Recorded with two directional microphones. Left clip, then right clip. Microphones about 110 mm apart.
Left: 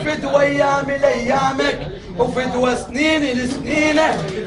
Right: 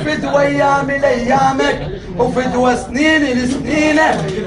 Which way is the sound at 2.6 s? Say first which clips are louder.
Right 4 dB; 55° left (ahead or behind).